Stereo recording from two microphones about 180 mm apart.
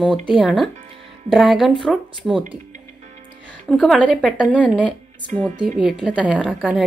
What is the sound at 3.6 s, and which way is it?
A woman's voice, centre (ahead or behind).